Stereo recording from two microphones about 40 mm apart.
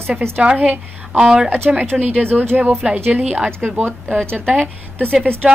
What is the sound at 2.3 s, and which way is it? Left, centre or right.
Speech, right.